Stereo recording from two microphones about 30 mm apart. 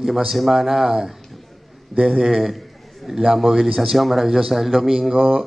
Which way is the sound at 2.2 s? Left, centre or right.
Centre.